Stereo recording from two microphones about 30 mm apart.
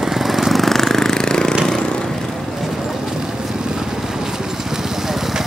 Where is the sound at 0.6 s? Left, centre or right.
Centre.